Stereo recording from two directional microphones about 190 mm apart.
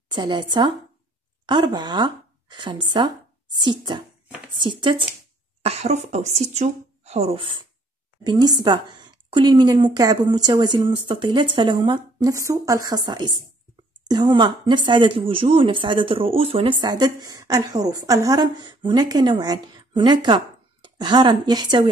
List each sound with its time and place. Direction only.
0.1 s speech: 25° right (ahead or behind)